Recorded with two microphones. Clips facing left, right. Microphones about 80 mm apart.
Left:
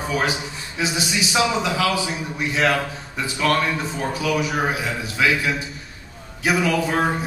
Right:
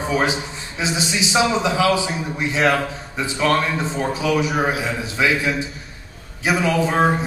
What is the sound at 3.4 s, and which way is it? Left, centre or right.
A man's voice, right.